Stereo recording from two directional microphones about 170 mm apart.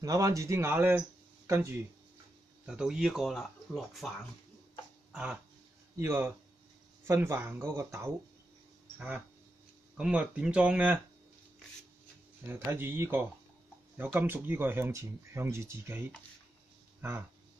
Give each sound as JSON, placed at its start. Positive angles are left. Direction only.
{"t": 0.0, "sound": "speech", "side_deg": -20}
{"t": 2.6, "sound": "speech", "side_deg": -5}
{"t": 5.1, "sound": "speech", "side_deg": -5}
{"t": 12.4, "sound": "speech", "side_deg": -15}